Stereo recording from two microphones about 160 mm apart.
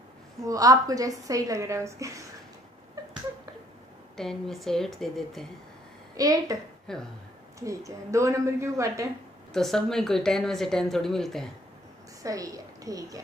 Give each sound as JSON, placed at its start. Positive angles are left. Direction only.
{"t": 0.4, "sound": "a woman's voice", "side_deg": -20}
{"t": 4.2, "sound": "speech", "side_deg": 0}
{"t": 6.1, "sound": "a woman's voice", "side_deg": -20}
{"t": 6.9, "sound": "speech", "side_deg": 5}
{"t": 7.6, "sound": "a woman's voice", "side_deg": -20}
{"t": 9.5, "sound": "speech", "side_deg": 0}
{"t": 12.2, "sound": "a woman's voice", "side_deg": -20}